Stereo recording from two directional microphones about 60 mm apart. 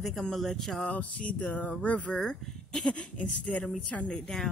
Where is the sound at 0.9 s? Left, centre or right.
Left.